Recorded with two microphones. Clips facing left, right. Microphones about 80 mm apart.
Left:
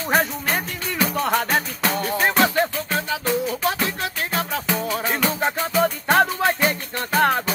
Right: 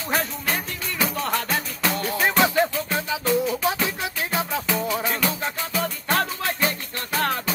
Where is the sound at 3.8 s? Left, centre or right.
Centre.